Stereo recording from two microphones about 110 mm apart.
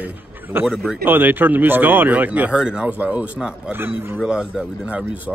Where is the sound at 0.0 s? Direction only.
20° right (ahead or behind).